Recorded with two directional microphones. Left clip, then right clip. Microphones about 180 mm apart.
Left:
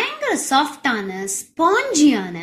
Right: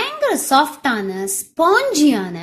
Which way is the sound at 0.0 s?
45° right (ahead or behind).